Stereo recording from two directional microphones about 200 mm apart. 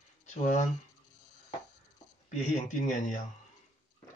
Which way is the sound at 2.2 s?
35° left (ahead or behind).